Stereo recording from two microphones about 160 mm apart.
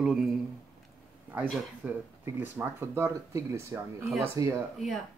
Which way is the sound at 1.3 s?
10° right (ahead or behind).